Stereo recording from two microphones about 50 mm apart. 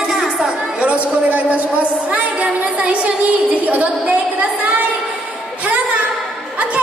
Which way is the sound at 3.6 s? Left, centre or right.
Right.